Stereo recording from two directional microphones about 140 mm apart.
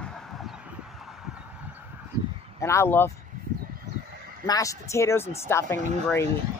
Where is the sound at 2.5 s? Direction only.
20° left (ahead or behind).